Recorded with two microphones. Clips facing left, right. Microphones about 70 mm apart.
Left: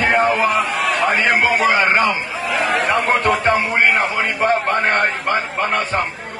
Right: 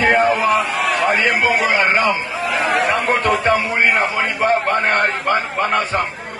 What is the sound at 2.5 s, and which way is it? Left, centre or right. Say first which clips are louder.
Speech: right 1 dB; centre.